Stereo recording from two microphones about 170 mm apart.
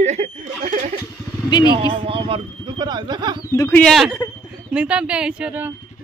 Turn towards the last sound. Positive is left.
turn(degrees=-10)  # may be behind; listen again after turning